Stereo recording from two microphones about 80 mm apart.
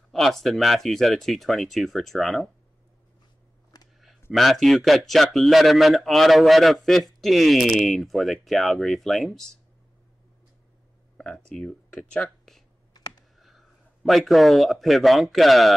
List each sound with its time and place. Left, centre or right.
0.1 s a man's voice: centre
3.7 s a sound: left
4.3 s a man's voice: centre
11.1 s a man's voice: centre